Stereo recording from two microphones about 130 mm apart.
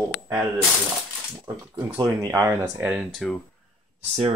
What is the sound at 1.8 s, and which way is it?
Speech, 30° right (ahead or behind).